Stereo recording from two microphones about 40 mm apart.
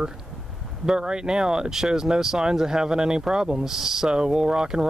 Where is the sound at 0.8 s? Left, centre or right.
Centre.